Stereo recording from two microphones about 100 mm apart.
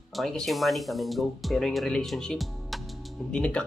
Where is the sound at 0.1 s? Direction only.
5° left (ahead or behind).